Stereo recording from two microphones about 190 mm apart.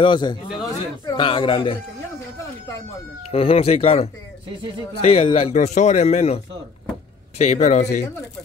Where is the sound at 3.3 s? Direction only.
30° left (ahead or behind).